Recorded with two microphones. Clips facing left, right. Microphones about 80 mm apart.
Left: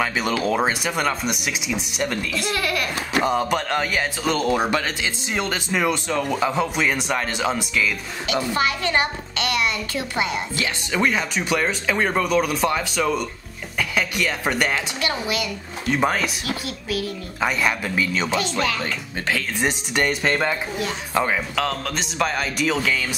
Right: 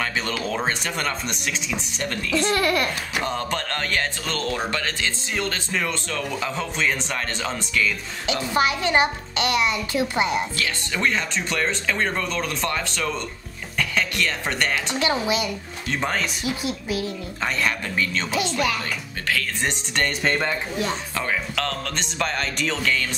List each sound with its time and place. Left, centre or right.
0.4 s speech: centre
2.3 s speech: right
3.2 s speech: centre
8.5 s a child's voice: centre
10.5 s speech: centre
15.0 s a child's voice: right
15.9 s speech: centre
16.4 s a child's voice: right
17.4 s speech: centre
19.2 s speech: left
20.0 s speech: centre
21.1 s speech: left
21.5 s speech: centre